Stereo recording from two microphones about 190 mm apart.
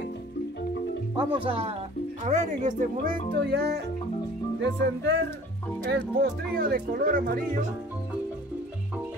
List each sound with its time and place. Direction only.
1.1 s speech: 25° right (ahead or behind); by 3.8 s 60° right (ahead or behind)
4.6 s music: 65° right (ahead or behind)
5.9 s speech: 55° right (ahead or behind)